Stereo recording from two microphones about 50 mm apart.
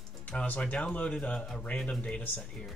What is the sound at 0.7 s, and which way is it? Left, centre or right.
Speech, left.